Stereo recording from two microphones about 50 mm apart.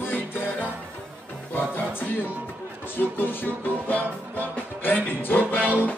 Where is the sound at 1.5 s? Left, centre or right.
Left.